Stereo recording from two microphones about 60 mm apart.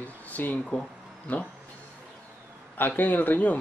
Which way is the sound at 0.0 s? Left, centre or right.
Left.